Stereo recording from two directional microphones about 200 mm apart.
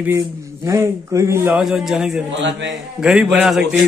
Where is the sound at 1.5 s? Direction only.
Centre (ahead or behind).